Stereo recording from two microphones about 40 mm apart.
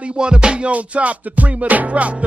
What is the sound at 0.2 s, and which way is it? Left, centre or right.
Music, right.